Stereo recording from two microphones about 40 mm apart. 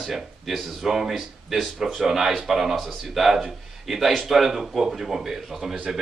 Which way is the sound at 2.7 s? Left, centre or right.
Centre.